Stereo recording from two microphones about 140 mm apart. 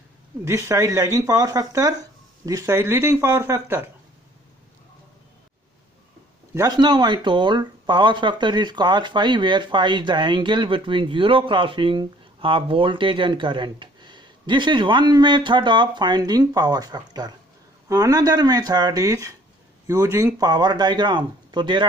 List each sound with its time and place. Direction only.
0.5 s speech: 20° right (ahead or behind)
6.8 s speech: 30° right (ahead or behind)